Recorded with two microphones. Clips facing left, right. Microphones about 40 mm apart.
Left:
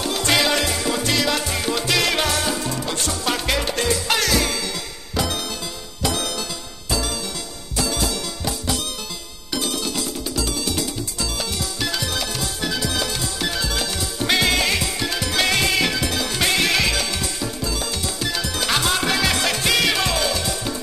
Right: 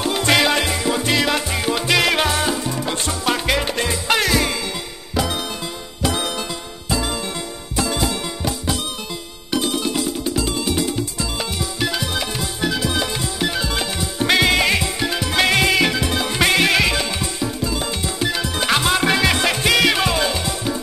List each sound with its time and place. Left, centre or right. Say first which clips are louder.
0.0 s music: right 3 dB; centre
7.7 s music: right 2 dB; right
9.5 s music: right 4 dB; right